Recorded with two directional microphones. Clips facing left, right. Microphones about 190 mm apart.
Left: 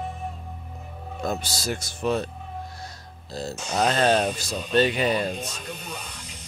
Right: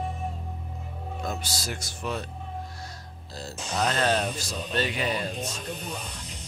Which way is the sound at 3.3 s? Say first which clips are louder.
Left 5 dB; 25° left (ahead or behind).